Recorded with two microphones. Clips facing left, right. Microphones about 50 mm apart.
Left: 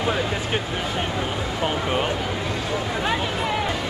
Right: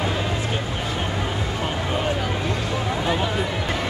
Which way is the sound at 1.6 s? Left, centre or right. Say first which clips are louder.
Left 3 dB; left.